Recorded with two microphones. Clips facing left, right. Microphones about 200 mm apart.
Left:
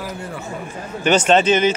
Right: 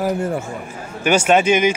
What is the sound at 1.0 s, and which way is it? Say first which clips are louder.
Speech: even; 10° right (ahead or behind).